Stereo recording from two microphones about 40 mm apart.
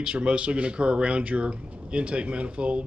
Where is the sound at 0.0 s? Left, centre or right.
Right.